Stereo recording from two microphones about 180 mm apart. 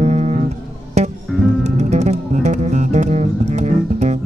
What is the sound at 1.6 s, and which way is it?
Music, 40° right (ahead or behind).